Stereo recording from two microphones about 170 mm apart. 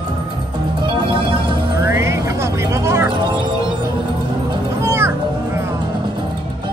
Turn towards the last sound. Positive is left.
turn(degrees=-15)  # may be behind; listen again after turning